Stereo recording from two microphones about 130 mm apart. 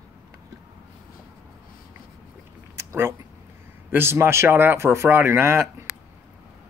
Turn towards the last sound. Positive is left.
turn(degrees=-20)  # may be behind; listen again after turning